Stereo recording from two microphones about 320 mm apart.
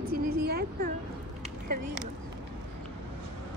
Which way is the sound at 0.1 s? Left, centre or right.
Right.